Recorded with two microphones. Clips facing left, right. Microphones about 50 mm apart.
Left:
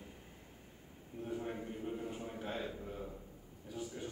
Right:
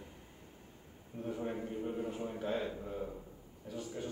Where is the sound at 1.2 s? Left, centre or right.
Centre.